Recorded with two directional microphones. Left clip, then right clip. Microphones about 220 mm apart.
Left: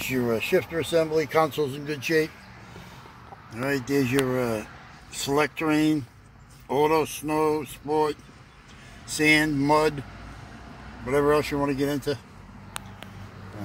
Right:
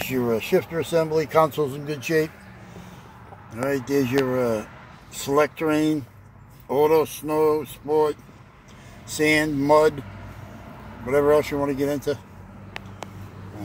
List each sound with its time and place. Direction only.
0.0 s speech: 10° right (ahead or behind)
3.5 s speech: 5° right (ahead or behind)
11.1 s speech: 5° right (ahead or behind)